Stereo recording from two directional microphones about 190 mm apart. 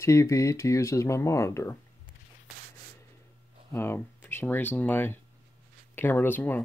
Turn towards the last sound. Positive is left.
turn(degrees=10)  # may be behind; listen again after turning